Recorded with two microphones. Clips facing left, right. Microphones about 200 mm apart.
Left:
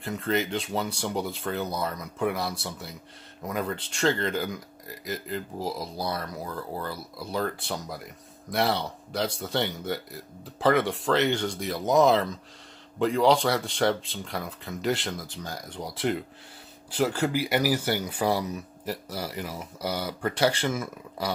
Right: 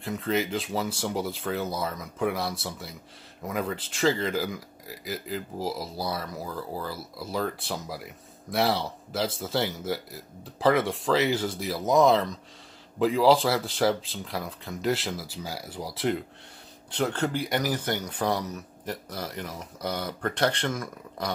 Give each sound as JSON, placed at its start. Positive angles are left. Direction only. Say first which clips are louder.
{"t": 0.0, "sound": "speech", "louder": "even", "side_deg": 0}